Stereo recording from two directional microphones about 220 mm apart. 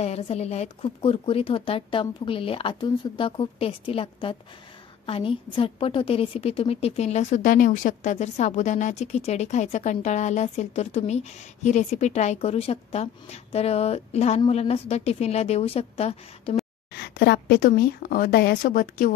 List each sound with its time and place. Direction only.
0.0 s a woman's voice: 30° left (ahead or behind)
16.9 s a woman's voice: 45° left (ahead or behind)